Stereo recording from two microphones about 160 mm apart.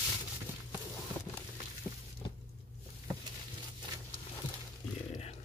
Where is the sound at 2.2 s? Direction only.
25° left (ahead or behind).